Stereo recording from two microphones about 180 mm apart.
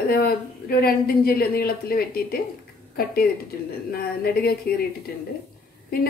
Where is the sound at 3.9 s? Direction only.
60° left (ahead or behind).